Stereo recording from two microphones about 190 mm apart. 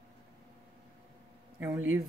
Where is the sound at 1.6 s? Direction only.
10° right (ahead or behind).